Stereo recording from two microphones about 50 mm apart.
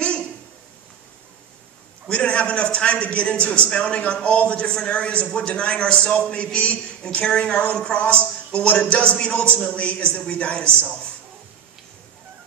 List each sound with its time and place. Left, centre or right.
2.0 s a man's voice: left